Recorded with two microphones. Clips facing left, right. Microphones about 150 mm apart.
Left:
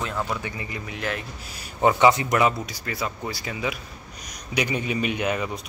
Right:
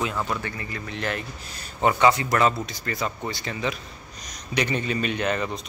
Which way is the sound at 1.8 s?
15° left (ahead or behind).